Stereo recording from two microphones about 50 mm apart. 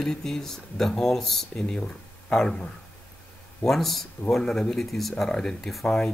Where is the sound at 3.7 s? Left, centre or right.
Centre.